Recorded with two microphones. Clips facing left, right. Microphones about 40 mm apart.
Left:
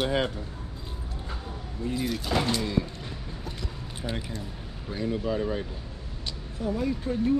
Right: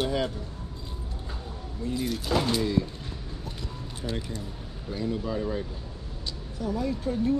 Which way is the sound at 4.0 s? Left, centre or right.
Centre.